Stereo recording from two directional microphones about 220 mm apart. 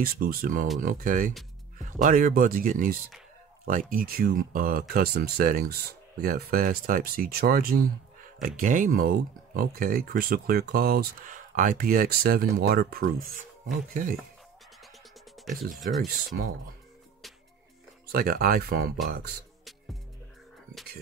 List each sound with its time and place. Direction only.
0.0 s speech: 40° right (ahead or behind)
15.4 s music: centre (ahead or behind)
15.7 s speech: centre (ahead or behind)
18.1 s speech: 40° right (ahead or behind)